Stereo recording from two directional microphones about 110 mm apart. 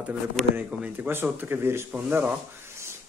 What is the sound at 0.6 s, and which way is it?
A man's voice, 10° right (ahead or behind).